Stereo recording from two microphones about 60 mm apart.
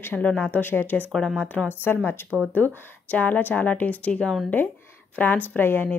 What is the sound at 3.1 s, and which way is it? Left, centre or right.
A woman's voice, left.